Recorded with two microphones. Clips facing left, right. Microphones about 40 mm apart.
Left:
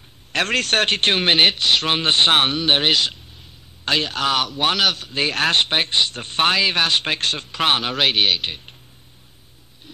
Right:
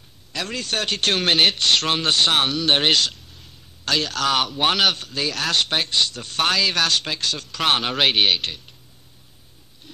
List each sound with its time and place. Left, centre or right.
0.3 s a man's voice: left
1.1 s a man's voice: left
2.0 s a man's voice: left
2.7 s speech: centre
3.1 s a sound: left
4.3 s speech: centre
5.1 s a man's voice: left
7.1 s speech: left
7.4 s speech: left
7.7 s speech: centre